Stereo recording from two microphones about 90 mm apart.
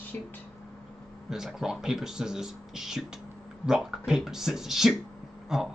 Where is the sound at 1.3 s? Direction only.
5° right (ahead or behind).